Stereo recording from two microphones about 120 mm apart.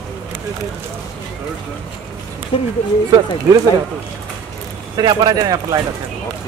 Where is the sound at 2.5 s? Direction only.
50° left (ahead or behind).